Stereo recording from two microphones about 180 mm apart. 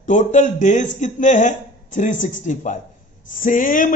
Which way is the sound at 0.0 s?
45° left (ahead or behind).